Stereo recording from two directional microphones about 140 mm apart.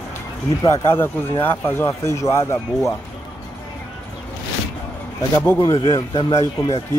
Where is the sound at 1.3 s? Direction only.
15° left (ahead or behind).